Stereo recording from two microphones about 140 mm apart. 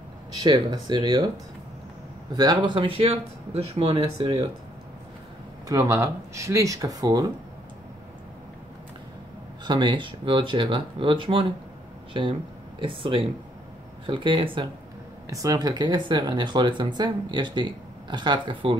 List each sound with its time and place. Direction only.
0.4 s speech: 30° right (ahead or behind)
2.3 s speech: 30° right (ahead or behind)
5.7 s speech: 20° right (ahead or behind)
9.7 s speech: 35° right (ahead or behind)
15.2 s speech: 25° right (ahead or behind)